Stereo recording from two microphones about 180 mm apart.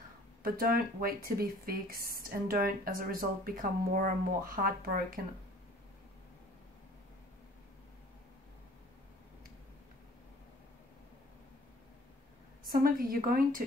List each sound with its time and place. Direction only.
0.4 s speech: 55° right (ahead or behind)
12.6 s speech: 55° right (ahead or behind)